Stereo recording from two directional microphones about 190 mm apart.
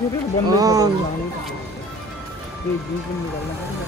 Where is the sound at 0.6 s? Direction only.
20° right (ahead or behind).